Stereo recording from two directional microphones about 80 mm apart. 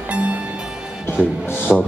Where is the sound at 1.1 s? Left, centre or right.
Left.